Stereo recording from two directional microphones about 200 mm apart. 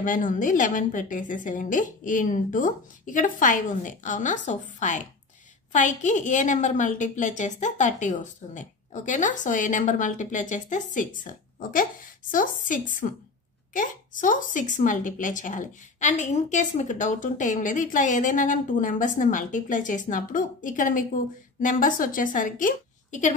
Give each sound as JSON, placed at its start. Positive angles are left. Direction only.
{"t": 0.0, "sound": "a woman's voice", "side_deg": 40}